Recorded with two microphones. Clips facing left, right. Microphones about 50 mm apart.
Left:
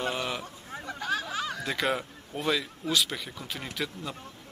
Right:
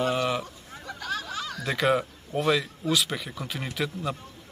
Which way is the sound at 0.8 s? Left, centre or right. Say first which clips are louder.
Left 1 dB; centre.